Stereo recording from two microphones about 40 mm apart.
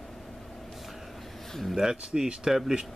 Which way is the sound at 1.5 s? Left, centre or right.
Centre.